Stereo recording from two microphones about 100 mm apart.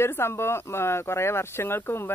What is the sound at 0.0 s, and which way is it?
Speech, 25° left (ahead or behind).